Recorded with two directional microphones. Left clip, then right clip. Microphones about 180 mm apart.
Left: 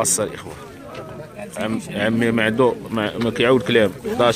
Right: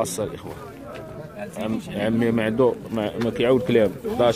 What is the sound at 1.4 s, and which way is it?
Speech, centre (ahead or behind).